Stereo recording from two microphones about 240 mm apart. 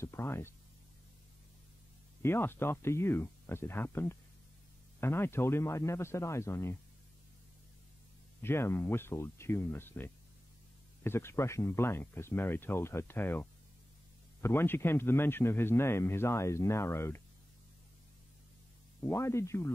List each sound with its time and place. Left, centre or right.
0.0 s speech: centre
2.2 s a man's voice: centre
8.4 s a man's voice: centre
19.0 s a man's voice: centre